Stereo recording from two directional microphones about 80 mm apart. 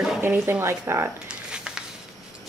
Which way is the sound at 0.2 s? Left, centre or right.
Right.